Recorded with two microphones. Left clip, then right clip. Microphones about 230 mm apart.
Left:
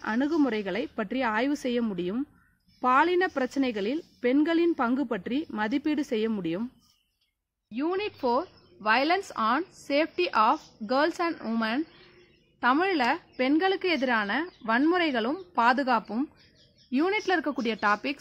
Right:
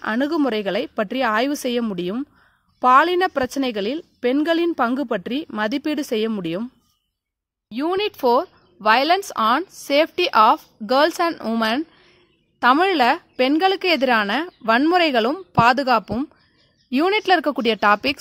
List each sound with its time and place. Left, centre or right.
0.0 s a woman's voice: right
7.7 s a woman's voice: right